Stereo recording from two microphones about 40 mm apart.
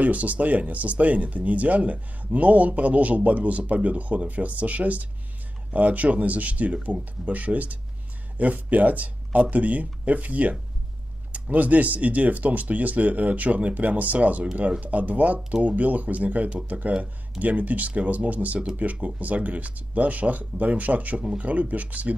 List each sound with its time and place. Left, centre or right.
0.0 s speech: right
11.5 s speech: right